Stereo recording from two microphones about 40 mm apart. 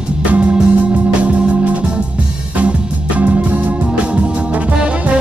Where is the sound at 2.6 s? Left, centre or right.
Right.